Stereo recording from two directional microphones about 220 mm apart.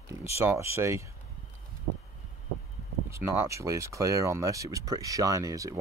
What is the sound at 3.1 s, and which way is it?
Speech, 10° right (ahead or behind).